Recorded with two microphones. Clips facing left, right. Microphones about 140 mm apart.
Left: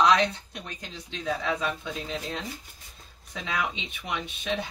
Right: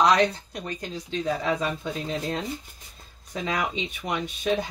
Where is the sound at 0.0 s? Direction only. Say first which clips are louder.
Right 2 dB; 40° right (ahead or behind).